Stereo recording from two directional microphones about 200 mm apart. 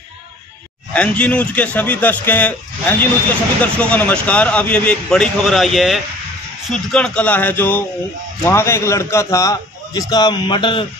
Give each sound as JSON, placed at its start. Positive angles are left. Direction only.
{"t": 0.9, "sound": "a man's voice", "side_deg": 5}